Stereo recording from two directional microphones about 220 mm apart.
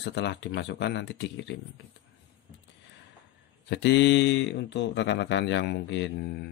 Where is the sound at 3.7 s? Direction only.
55° left (ahead or behind).